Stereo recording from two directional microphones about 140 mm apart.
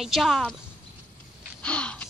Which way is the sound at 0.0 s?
Centre (ahead or behind).